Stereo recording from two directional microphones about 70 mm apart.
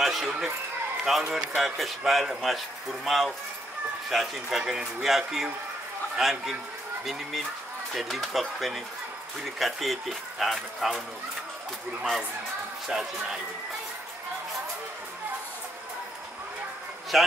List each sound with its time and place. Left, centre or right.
0.0 s speech: centre
7.9 s speech: centre
12.8 s speech: centre
17.1 s speech: centre